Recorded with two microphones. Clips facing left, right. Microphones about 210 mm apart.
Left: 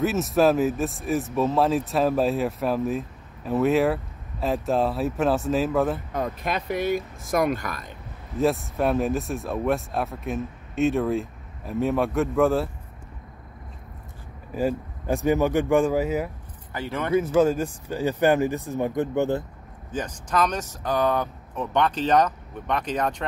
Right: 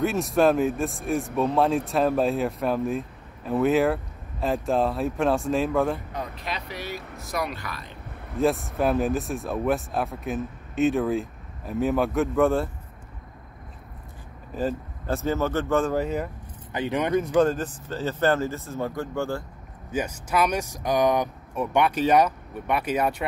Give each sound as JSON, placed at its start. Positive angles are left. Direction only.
{"t": 0.0, "sound": "speech", "side_deg": 0}
{"t": 6.1, "sound": "speech", "side_deg": 50}
{"t": 8.4, "sound": "speech", "side_deg": 0}
{"t": 14.5, "sound": "speech", "side_deg": 10}
{"t": 16.7, "sound": "speech", "side_deg": -15}
{"t": 17.1, "sound": "speech", "side_deg": 5}
{"t": 19.9, "sound": "speech", "side_deg": -10}